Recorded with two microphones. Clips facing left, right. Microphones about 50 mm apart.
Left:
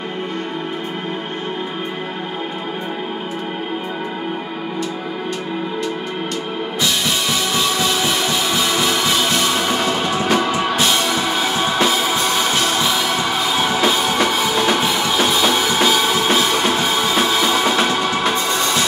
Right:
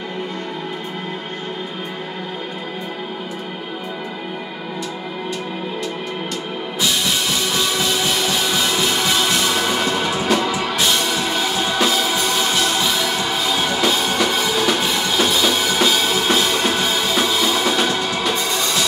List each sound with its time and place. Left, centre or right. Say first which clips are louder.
7.5 s music: left 2 dB; centre
10.3 s music: left 2 dB; left